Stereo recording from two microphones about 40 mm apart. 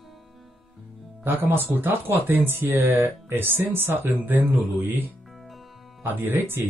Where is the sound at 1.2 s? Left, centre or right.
Right.